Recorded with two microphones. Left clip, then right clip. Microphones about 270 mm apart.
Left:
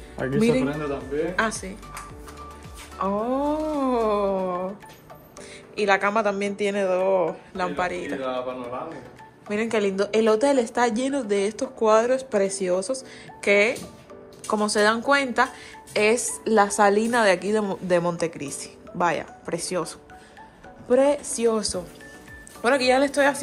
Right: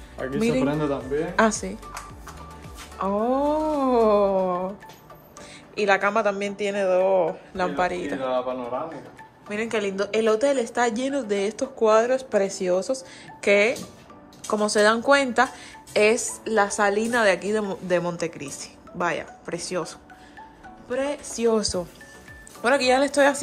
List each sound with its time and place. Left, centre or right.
0.4 s a woman's voice: centre
3.0 s a woman's voice: centre
5.8 s a woman's voice: centre
9.5 s a woman's voice: centre